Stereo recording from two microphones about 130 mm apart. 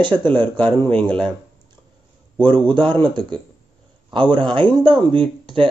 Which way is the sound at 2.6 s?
35° right (ahead or behind).